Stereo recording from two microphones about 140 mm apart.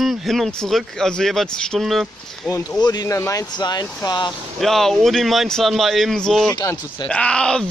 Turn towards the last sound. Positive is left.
turn(degrees=5)  # may be behind; listen again after turning